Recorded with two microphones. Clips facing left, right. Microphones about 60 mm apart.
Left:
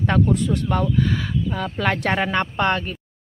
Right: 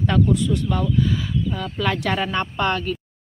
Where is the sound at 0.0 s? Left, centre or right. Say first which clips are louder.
Even; left.